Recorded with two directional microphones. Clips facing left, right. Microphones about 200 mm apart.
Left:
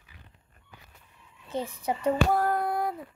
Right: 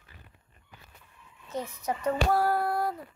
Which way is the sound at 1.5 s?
30° left (ahead or behind).